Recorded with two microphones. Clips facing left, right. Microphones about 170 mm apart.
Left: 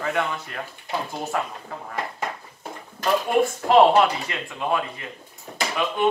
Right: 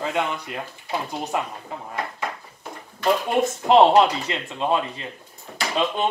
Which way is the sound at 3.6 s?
25° right (ahead or behind).